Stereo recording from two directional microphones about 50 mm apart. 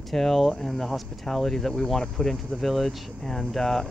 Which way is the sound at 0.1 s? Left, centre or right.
Centre.